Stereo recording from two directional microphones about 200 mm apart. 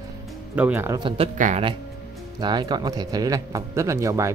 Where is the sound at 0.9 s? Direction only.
25° right (ahead or behind).